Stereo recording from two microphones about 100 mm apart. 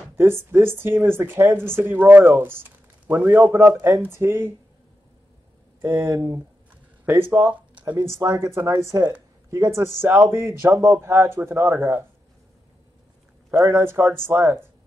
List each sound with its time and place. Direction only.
0.1 s a man's voice: 25° right (ahead or behind)
5.8 s speech: 20° right (ahead or behind)
8.2 s speech: 30° right (ahead or behind)
13.5 s speech: 25° right (ahead or behind)